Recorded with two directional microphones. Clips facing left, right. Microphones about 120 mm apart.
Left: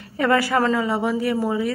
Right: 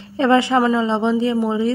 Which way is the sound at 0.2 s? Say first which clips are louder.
Right 4 dB; 20° right (ahead or behind).